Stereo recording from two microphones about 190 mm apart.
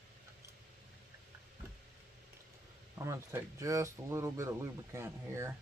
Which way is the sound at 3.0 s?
15° right (ahead or behind).